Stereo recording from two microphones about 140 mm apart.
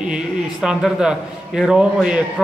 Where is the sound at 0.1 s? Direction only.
5° right (ahead or behind).